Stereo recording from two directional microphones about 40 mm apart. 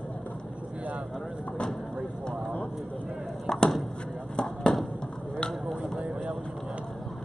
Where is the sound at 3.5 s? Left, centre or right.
Centre.